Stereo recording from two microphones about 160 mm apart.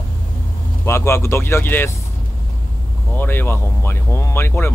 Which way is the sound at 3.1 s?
10° left (ahead or behind).